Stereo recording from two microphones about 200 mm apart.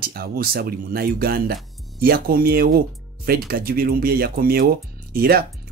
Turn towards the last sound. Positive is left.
turn(degrees=-50)  # may be behind; listen again after turning